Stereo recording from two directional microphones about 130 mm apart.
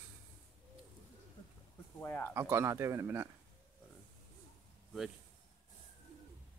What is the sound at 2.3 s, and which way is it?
Speech, 20° right (ahead or behind).